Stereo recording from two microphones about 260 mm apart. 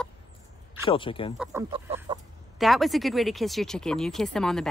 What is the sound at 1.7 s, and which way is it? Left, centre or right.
Speech, centre.